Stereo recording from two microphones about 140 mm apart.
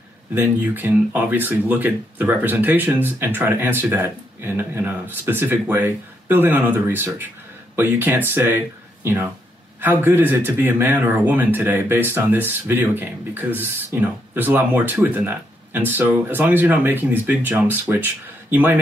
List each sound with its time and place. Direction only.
0.3 s speech: 15° right (ahead or behind)